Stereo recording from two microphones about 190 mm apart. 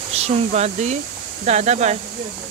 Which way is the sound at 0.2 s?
35° right (ahead or behind).